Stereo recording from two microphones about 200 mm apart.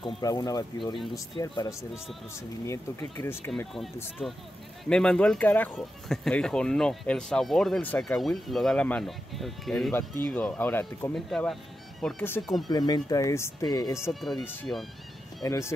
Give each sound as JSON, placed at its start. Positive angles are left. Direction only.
{"t": 0.0, "sound": "speech", "side_deg": 20}
{"t": 4.2, "sound": "speech", "side_deg": 0}
{"t": 12.6, "sound": "speech", "side_deg": 20}
{"t": 14.2, "sound": "speech", "side_deg": 5}
{"t": 15.4, "sound": "speech", "side_deg": 15}